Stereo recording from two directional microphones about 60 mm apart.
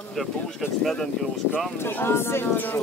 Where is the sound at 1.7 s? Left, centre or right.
Left.